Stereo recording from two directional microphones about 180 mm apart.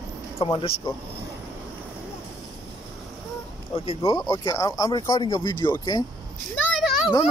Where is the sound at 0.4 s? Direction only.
30° left (ahead or behind).